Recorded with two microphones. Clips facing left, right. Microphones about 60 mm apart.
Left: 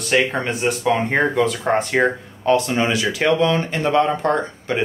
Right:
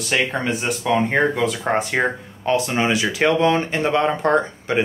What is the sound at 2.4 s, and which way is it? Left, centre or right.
Speech, centre.